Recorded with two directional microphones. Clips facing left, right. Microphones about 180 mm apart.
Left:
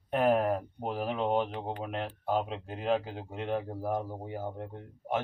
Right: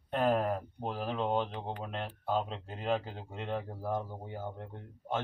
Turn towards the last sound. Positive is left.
turn(degrees=10)  # may be behind; listen again after turning